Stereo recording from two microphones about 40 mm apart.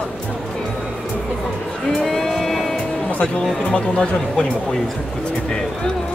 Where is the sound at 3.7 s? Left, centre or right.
Left.